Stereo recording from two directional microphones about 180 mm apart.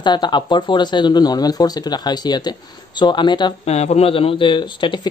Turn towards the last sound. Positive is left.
turn(degrees=25)  # may be behind; listen again after turning